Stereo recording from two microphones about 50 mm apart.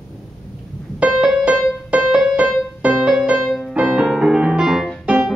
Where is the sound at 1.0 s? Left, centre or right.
Right.